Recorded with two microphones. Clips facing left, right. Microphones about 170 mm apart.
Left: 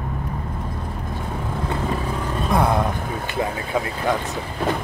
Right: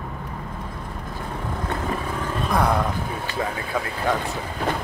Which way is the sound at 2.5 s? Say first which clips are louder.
Left 2 dB; 20° left (ahead or behind).